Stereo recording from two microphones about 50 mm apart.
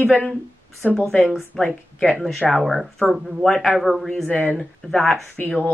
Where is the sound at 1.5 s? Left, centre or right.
Centre.